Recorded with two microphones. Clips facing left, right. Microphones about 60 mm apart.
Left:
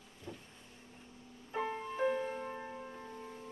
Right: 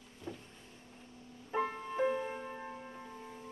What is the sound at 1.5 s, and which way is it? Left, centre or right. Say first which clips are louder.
Music: right 2 dB; centre.